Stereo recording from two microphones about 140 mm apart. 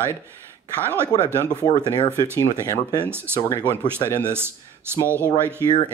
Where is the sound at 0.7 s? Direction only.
15° right (ahead or behind).